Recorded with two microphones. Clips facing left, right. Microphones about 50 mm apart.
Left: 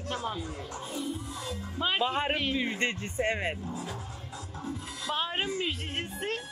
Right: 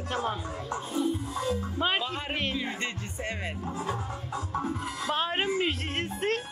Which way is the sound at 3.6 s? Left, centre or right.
Right.